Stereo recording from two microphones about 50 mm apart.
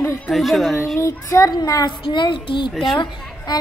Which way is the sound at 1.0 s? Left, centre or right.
Left.